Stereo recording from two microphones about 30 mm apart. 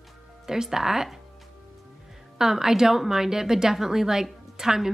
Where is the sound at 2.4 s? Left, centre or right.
Centre.